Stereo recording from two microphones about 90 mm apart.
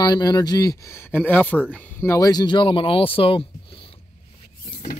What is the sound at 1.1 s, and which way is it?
Speech, 20° left (ahead or behind).